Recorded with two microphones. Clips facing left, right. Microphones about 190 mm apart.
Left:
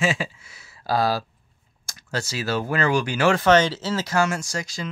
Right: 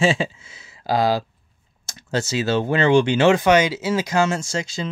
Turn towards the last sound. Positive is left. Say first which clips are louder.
# right 4 dB
turn(degrees=-25)  # may be behind; listen again after turning